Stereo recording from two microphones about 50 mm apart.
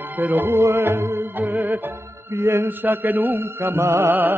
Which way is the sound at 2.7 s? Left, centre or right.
Right.